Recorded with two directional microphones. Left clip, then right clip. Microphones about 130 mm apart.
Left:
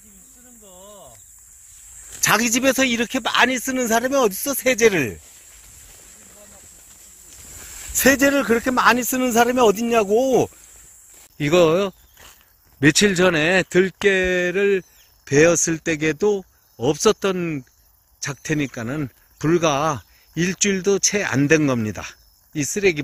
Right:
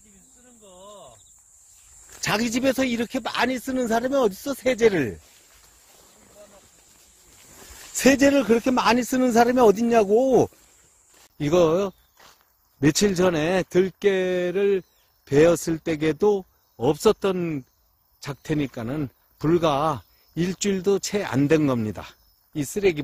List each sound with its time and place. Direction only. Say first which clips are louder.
0.7 s a sound: left 1 dB; centre (ahead or behind)
2.1 s speech: left 6 dB; 25° right (ahead or behind); by 3.4 s centre (ahead or behind)
3.4 s speech: left 4 dB; 20° right (ahead or behind)
7.9 s speech: left 2 dB; 60° right (ahead or behind)
11.1 s a sound: left 3 dB; centre (ahead or behind)
12.8 s speech: left 4 dB; centre (ahead or behind)